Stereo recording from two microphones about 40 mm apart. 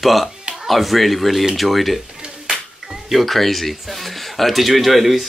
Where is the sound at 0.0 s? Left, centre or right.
Centre.